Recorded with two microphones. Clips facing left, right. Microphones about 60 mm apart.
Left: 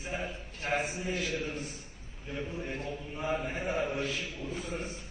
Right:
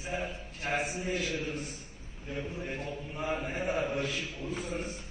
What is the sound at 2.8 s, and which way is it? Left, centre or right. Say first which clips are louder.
Mantra: even; right.